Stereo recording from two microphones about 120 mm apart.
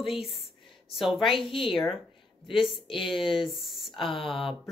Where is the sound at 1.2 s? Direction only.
45° left (ahead or behind).